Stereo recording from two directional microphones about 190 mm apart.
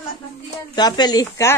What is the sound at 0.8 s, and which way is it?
Speech, 20° left (ahead or behind).